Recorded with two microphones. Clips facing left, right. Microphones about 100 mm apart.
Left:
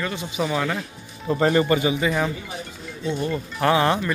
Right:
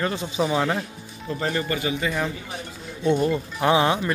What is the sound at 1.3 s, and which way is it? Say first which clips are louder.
Speech: left 7 dB; 40° left (ahead or behind).